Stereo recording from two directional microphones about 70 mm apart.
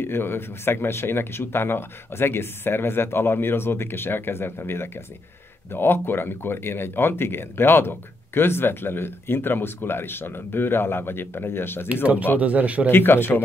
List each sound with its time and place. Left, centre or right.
0.0 s speech: left
12.4 s a man's voice: right
12.9 s speech: left